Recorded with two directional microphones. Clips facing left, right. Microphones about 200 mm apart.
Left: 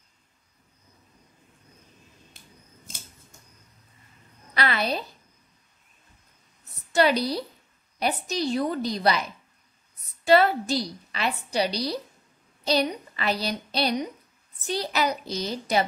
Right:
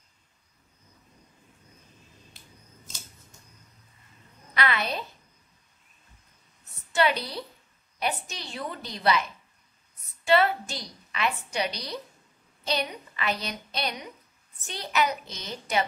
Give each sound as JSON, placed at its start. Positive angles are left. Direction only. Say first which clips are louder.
{"t": 4.6, "sound": "a woman's voice", "louder": "left 2 dB", "side_deg": 35}
{"t": 6.9, "sound": "a woman's voice", "louder": "left 4 dB", "side_deg": 40}
{"t": 10.2, "sound": "a woman's voice", "louder": "left 4 dB", "side_deg": 35}